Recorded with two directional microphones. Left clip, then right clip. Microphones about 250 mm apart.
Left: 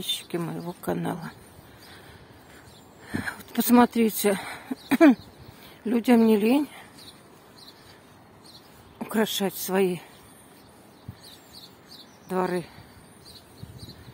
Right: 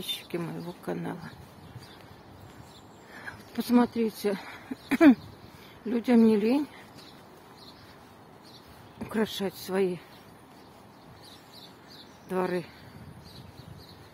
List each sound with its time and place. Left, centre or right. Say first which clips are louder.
0.0 s a woman's voice: left 4 dB; centre
3.1 s a woman's voice: left 10 dB; left
8.9 s speech: left 5 dB; left
12.3 s speech: left 3 dB; centre